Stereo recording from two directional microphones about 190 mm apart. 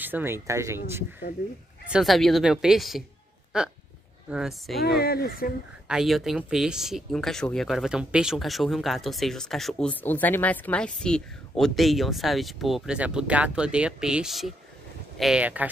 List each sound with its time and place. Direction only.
0.0 s speech: 10° right (ahead or behind)
1.9 s speech: centre (ahead or behind)
4.8 s speech: 55° left (ahead or behind)
5.9 s speech: centre (ahead or behind)